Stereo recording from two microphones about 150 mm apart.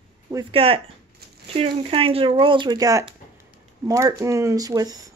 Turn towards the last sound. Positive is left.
turn(degrees=-25)  # may be behind; listen again after turning